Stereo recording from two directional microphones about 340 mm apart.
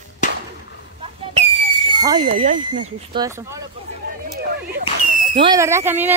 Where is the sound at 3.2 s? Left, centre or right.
Centre.